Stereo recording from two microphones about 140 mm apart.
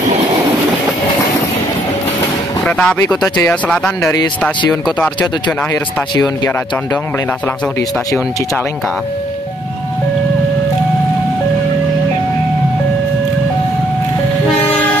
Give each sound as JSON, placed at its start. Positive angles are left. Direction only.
{"t": 2.6, "sound": "speech", "side_deg": 5}
{"t": 4.0, "sound": "speech", "side_deg": 20}
{"t": 4.8, "sound": "speech", "side_deg": 10}